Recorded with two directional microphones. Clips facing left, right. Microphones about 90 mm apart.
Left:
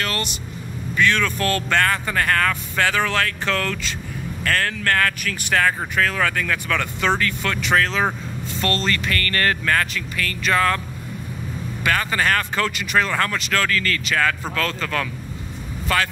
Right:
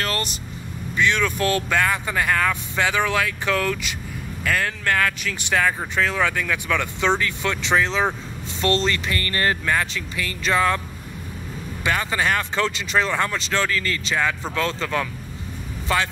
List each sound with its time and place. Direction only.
0.0 s speech: 35° right (ahead or behind)
0.9 s speech: 15° right (ahead or behind)
11.8 s speech: 20° right (ahead or behind)